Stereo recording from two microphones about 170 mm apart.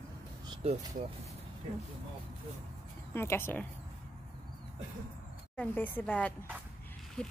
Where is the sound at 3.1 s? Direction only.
15° left (ahead or behind).